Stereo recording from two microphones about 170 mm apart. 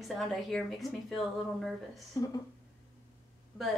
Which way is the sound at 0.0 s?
Centre (ahead or behind).